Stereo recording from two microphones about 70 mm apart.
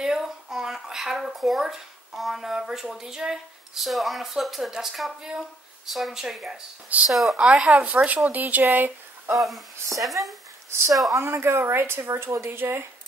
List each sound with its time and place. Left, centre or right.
0.0 s speech: centre
7.3 s speech: centre
9.3 s speech: centre
10.7 s a woman's voice: right